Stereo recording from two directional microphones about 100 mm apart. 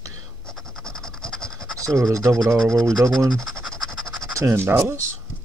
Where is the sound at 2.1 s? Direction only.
30° right (ahead or behind).